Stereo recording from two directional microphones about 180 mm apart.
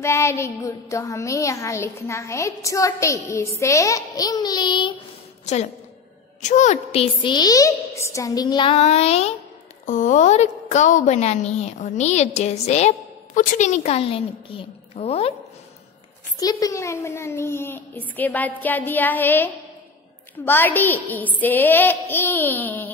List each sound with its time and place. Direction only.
0.0 s a child's voice: 15° left (ahead or behind)
5.4 s a woman's voice: 40° left (ahead or behind)
16.3 s a child's voice: 20° left (ahead or behind)